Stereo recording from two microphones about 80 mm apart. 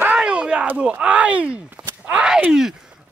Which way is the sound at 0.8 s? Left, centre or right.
Centre.